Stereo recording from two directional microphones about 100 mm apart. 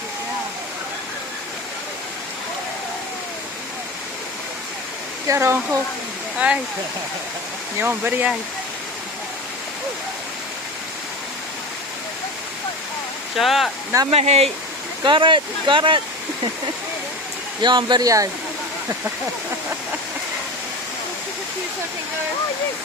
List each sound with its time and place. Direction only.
5.3 s speech: 25° right (ahead or behind)
7.8 s speech: 20° right (ahead or behind)
13.4 s speech: centre (ahead or behind)
14.1 s speech: 90° right
15.0 s speech: 55° right (ahead or behind)
17.6 s speech: 50° right (ahead or behind)
18.0 s speech: 35° right (ahead or behind)